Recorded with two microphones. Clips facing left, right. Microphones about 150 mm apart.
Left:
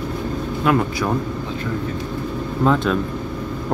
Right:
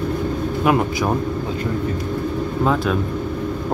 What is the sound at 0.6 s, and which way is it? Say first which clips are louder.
Speech: even; 15° right (ahead or behind).